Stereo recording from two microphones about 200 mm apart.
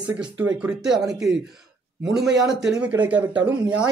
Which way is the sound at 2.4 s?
Centre (ahead or behind).